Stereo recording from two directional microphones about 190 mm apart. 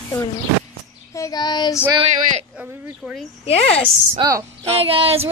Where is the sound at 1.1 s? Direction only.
20° left (ahead or behind).